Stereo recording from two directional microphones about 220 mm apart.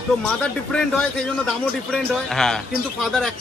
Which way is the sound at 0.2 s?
5° left (ahead or behind).